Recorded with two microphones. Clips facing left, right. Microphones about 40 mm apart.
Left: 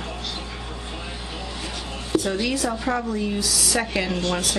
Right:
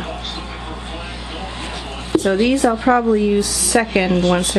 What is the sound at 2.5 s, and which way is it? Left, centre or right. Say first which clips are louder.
A woman's voice: right 10 dB; right.